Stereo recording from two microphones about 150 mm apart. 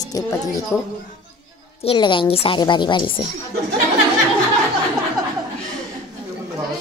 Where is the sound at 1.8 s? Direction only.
35° left (ahead or behind).